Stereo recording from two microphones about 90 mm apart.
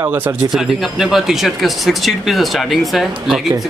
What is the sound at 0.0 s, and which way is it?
Speech, 20° right (ahead or behind).